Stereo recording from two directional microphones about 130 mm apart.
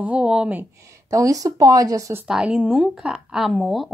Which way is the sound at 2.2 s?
5° right (ahead or behind).